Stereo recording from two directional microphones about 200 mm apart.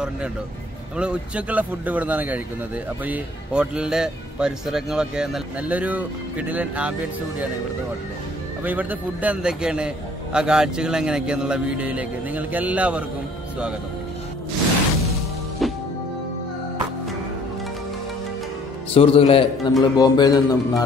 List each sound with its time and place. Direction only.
0.9 s speech: 5° right (ahead or behind)
8.6 s speech: 5° right (ahead or behind)
15.6 s music: centre (ahead or behind)
18.9 s speech: 30° left (ahead or behind)